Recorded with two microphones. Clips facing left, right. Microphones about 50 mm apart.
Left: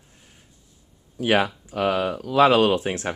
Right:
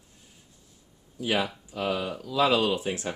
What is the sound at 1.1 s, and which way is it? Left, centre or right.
Speech, left.